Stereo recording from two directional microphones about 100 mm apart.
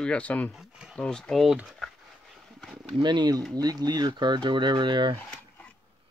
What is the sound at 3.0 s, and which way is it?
Speech, 45° right (ahead or behind).